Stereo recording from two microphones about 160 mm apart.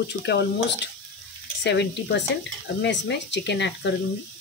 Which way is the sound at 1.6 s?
90° left.